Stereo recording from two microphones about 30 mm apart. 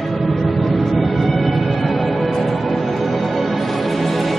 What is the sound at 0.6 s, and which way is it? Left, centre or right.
Music, centre.